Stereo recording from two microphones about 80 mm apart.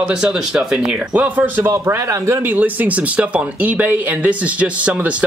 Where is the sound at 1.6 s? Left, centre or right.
Right.